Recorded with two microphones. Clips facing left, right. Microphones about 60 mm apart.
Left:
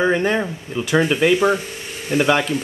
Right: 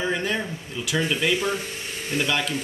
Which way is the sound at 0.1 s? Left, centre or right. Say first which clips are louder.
Left 7 dB; left.